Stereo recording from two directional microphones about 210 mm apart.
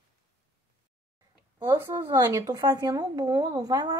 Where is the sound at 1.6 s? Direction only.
20° right (ahead or behind).